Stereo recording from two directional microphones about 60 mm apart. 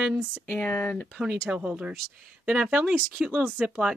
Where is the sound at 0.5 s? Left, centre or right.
Left.